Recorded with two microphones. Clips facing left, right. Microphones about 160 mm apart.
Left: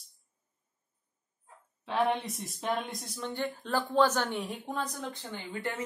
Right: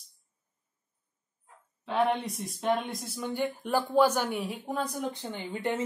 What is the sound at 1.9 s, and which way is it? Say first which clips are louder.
Speech: right 2 dB; centre (ahead or behind).